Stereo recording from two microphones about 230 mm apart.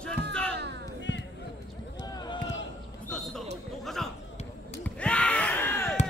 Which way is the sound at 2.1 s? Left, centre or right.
Centre.